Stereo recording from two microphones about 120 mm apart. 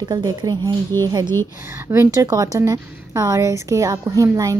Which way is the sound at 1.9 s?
25° right (ahead or behind).